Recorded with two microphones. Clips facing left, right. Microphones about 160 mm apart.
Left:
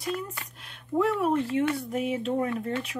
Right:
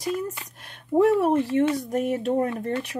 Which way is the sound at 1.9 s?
45° right (ahead or behind).